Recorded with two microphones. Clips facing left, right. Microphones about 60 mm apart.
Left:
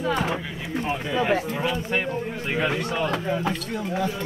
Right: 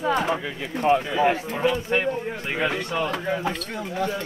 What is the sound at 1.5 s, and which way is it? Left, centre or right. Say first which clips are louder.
Speech: right 3 dB; centre.